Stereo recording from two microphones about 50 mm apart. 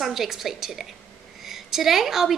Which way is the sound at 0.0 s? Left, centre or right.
Centre.